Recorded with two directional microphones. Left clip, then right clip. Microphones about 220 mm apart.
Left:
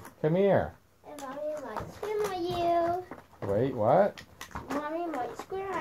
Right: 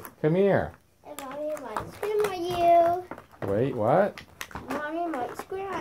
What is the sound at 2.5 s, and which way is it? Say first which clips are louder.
Child singing: right 9 dB; 30° right (ahead or behind).